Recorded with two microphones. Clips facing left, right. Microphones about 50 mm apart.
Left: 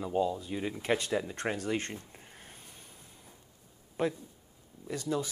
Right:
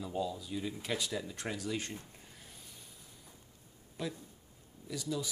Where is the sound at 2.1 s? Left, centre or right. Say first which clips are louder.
Left 3 dB; left.